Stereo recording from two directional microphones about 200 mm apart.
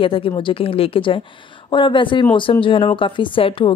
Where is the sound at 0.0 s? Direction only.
25° left (ahead or behind).